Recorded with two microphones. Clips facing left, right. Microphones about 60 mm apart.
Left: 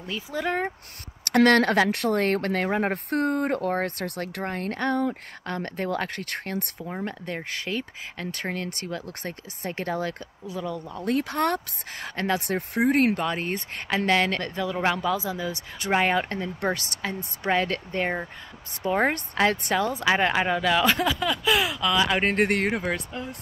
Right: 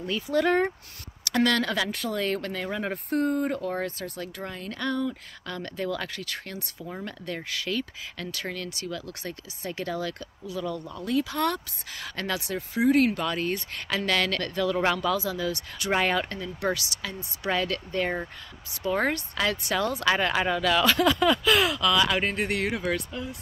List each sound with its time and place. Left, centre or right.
0.0 s speech: centre
1.2 s speech: left
6.9 s speech: left
10.6 s speech: centre
11.1 s speech: left
12.0 s speech: left
12.4 s speech: left
13.2 s speech: left
19.7 s speech: left
21.0 s speech: centre
22.2 s speech: left
22.7 s speech: left